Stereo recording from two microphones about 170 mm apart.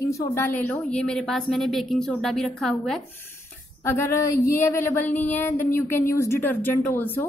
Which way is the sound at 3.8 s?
15° left (ahead or behind).